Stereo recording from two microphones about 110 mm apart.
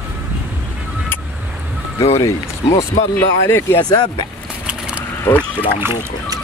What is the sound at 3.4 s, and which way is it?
Speech, 25° left (ahead or behind).